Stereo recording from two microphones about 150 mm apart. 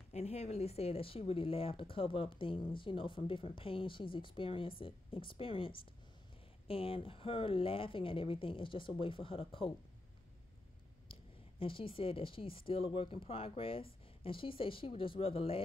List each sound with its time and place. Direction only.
0.1 s speech: 45° left (ahead or behind)
11.6 s speech: 35° left (ahead or behind)